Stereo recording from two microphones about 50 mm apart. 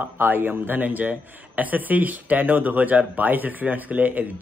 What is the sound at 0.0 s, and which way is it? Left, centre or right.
Speech, right.